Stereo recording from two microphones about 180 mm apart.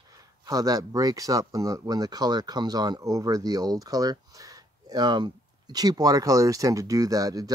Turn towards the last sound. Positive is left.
turn(degrees=-20)  # may be behind; listen again after turning